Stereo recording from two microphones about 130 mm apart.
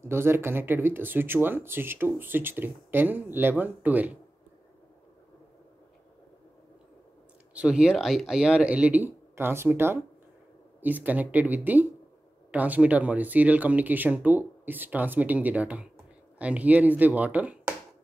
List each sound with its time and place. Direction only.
0.0 s speech: 20° right (ahead or behind)
7.5 s speech: 5° right (ahead or behind)